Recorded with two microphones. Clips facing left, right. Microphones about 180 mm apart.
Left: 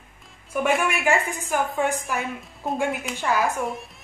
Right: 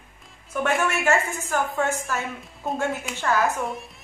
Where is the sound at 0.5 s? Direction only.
10° left (ahead or behind).